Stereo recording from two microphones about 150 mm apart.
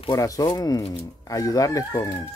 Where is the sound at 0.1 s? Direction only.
25° left (ahead or behind).